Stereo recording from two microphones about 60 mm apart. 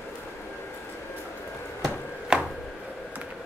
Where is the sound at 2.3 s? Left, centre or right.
Centre.